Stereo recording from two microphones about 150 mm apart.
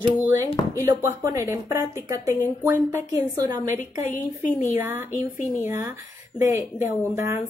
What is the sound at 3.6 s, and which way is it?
Speech, 60° left (ahead or behind).